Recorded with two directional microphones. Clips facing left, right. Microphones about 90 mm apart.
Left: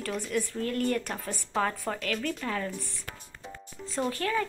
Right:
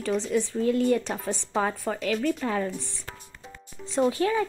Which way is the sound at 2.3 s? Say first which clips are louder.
Right 5 dB; 30° right (ahead or behind).